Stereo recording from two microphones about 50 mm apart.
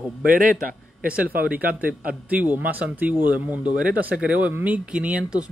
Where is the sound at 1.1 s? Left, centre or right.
Right.